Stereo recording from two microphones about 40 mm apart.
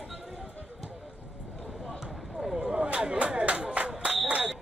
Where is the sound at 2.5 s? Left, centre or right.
Right.